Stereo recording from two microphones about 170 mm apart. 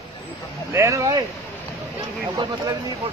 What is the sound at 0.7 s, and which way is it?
Speech, 20° right (ahead or behind).